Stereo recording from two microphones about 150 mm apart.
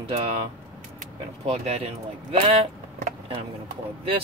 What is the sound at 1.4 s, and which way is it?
Speech, 45° right (ahead or behind).